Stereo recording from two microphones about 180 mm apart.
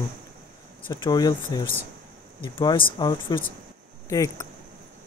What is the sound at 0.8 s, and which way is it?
Speech, 25° left (ahead or behind).